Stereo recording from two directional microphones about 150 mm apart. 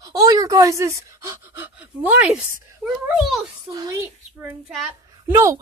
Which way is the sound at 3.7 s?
25° right (ahead or behind).